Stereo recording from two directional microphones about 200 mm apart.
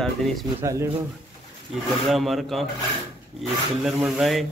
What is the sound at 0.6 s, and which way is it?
Speech, 15° right (ahead or behind).